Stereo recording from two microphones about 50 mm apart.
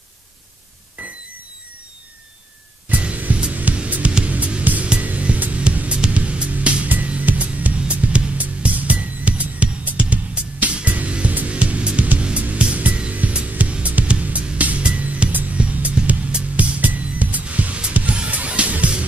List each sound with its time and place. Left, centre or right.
2.9 s music: right